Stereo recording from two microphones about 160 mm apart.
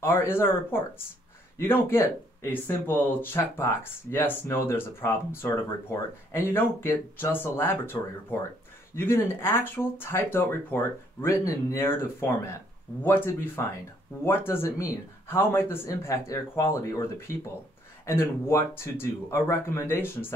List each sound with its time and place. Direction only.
0.0 s speech: 15° left (ahead or behind)